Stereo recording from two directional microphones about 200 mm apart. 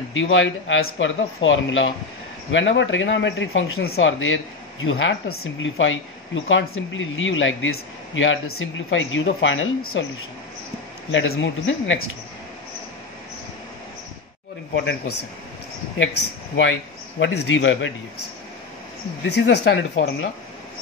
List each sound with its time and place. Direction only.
0.1 s speech: 75° left (ahead or behind)
11.1 s speech: 70° left (ahead or behind)
17.2 s speech: 65° left (ahead or behind)
19.2 s speech: 60° left (ahead or behind)